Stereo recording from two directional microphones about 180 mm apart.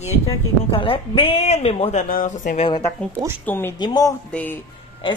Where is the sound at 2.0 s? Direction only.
50° left (ahead or behind).